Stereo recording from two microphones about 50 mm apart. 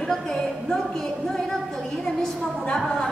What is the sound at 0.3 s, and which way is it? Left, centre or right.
A woman's voice, centre.